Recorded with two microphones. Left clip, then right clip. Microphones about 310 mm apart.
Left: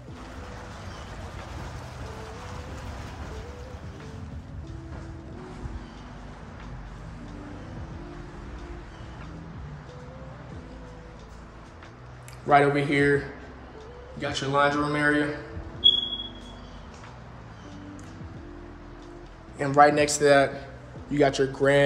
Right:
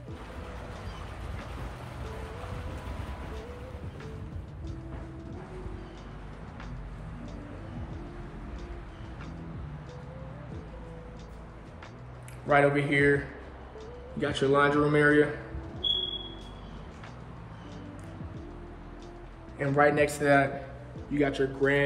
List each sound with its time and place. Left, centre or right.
12.4 s speech: centre
14.2 s speech: centre
19.6 s speech: centre